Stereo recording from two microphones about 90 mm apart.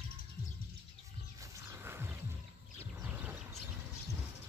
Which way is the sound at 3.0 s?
20° right (ahead or behind).